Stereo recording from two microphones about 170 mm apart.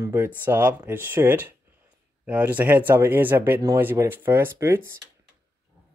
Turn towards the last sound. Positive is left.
turn(degrees=-15)  # may be behind; listen again after turning